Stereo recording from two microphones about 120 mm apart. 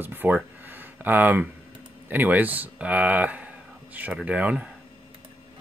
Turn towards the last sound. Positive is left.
turn(degrees=-10)  # may be behind; listen again after turning